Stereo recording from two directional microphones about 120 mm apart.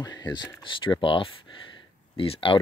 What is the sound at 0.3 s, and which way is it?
Speech, 40° left (ahead or behind).